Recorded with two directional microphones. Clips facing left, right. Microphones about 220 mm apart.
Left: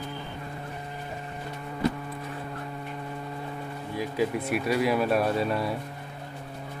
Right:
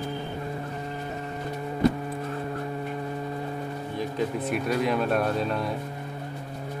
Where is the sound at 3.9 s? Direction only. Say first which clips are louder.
Left 1 dB; 10° left (ahead or behind).